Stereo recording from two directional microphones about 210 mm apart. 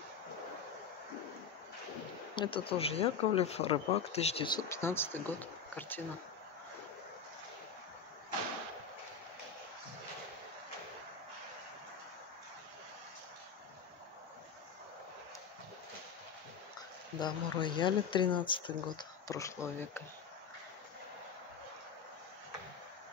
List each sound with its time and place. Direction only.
2.3 s speech: 25° left (ahead or behind); by 6.0 s 10° left (ahead or behind)
17.2 s speech: 25° left (ahead or behind)